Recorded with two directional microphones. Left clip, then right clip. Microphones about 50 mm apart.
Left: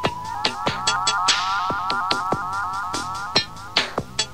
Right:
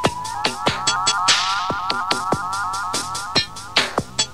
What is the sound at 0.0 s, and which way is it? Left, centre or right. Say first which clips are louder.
Music: right 2 dB; centre.